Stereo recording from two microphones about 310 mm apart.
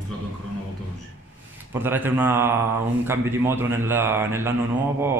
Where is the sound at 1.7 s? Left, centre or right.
Centre.